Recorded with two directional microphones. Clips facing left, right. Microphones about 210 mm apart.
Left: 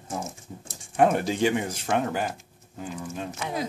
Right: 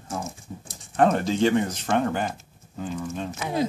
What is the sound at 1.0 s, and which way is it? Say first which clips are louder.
Speech: right 1 dB; 10° left (ahead or behind).